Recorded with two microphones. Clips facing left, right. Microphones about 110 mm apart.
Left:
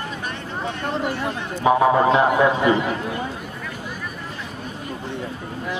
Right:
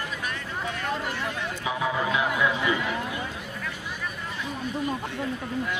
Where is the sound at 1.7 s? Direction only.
50° left (ahead or behind).